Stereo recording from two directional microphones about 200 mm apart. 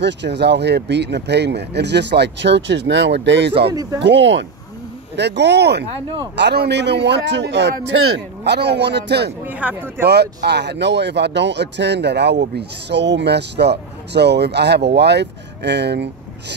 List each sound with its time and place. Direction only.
0.0 s speech: 60° right (ahead or behind)
9.5 s speech: 5° right (ahead or behind)
10.0 s speech: 55° right (ahead or behind)